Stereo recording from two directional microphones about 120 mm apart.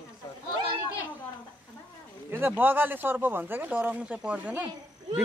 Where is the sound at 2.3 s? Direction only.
15° right (ahead or behind).